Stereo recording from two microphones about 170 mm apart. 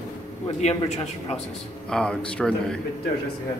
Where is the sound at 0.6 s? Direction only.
40° left (ahead or behind).